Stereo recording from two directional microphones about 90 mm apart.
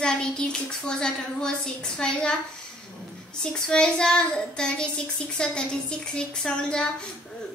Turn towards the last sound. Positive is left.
turn(degrees=10)  # may be behind; listen again after turning